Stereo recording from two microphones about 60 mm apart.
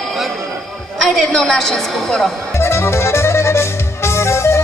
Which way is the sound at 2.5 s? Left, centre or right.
Left.